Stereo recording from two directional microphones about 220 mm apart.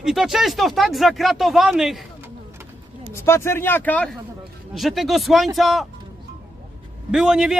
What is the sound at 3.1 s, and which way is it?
A man's voice, 10° left (ahead or behind).